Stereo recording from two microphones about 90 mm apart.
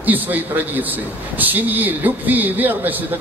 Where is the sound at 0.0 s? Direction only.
20° right (ahead or behind).